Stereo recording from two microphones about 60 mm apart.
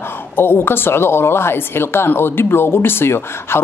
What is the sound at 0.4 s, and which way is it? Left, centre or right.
A woman's voice, left.